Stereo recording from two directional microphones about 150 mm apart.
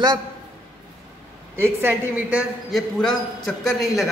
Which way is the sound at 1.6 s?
15° right (ahead or behind).